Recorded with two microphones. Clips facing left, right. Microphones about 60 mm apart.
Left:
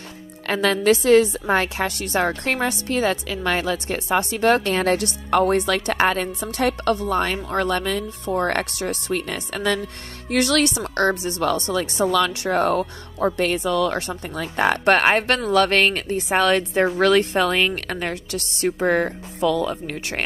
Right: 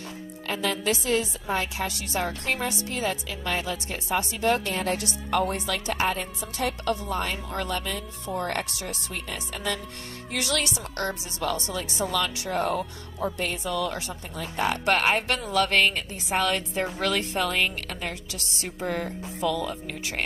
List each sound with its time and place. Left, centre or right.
0.5 s a woman's voice: left